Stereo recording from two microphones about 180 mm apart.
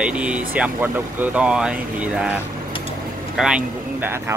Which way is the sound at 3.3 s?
5° right (ahead or behind).